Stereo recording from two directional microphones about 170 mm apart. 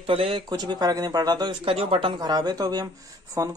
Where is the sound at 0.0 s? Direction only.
35° right (ahead or behind).